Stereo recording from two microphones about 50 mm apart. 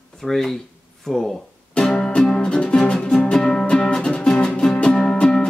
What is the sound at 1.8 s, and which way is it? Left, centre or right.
Music, centre.